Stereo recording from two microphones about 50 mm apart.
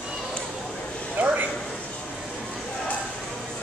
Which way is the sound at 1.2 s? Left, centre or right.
Right.